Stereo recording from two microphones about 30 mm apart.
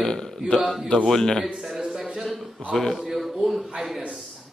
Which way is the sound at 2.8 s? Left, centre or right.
Centre.